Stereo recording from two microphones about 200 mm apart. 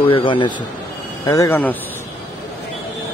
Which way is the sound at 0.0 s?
25° left (ahead or behind).